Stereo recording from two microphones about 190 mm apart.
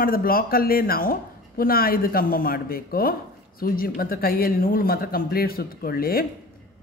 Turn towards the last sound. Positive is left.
turn(degrees=50)  # may be behind; listen again after turning